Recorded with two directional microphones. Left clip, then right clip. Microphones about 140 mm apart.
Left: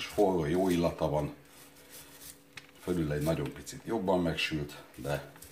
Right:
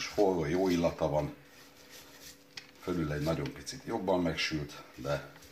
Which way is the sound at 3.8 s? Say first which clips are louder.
Left 1 dB; 15° right (ahead or behind).